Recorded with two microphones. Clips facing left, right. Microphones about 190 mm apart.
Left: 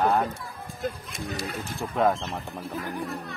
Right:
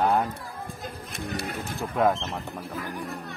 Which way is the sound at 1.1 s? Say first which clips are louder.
Right 1 dB; 60° right (ahead or behind).